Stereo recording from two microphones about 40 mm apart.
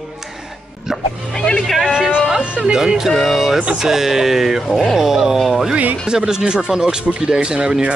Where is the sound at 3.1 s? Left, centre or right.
Centre.